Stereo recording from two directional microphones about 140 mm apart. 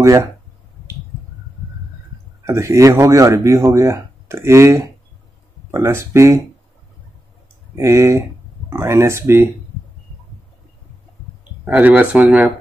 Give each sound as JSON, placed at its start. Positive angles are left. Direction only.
{"t": 0.0, "sound": "speech", "side_deg": -20}
{"t": 2.4, "sound": "speech", "side_deg": -20}
{"t": 7.7, "sound": "speech", "side_deg": -20}
{"t": 11.6, "sound": "speech", "side_deg": -10}